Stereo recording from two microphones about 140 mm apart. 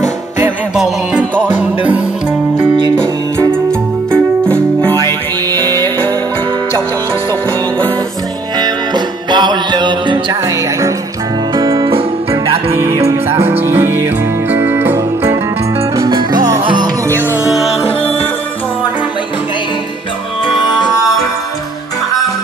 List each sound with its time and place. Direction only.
0.7 s music: 5° right (ahead or behind)
2.5 s music: 35° right (ahead or behind)
4.1 s music: 10° left (ahead or behind)
8.5 s music: 30° right (ahead or behind)
11.5 s music: 30° right (ahead or behind)
12.7 s music: 20° right (ahead or behind)
16.0 s salsa music: 30° right (ahead or behind)